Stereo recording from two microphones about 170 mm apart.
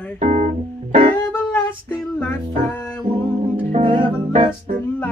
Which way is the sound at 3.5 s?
30° right (ahead or behind).